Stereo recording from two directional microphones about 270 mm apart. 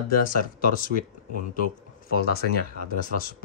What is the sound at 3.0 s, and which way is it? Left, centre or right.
Speech, left.